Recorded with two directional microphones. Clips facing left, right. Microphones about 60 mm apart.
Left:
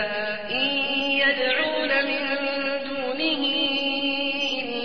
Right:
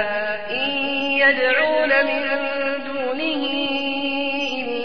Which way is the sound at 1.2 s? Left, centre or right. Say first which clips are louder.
Right 7 dB; right.